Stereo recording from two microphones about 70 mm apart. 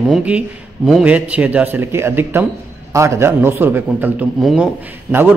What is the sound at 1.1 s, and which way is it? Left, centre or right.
A man's voice, right.